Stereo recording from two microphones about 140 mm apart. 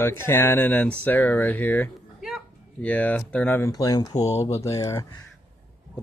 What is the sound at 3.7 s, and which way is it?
Speech, 25° left (ahead or behind).